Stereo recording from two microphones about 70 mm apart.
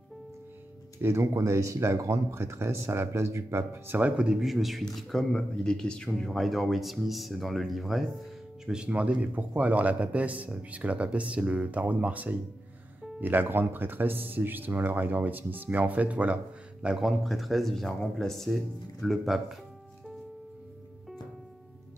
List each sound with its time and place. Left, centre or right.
1.0 s speech: right
4.2 s speech: centre
8.6 s a man's voice: centre
16.8 s speech: centre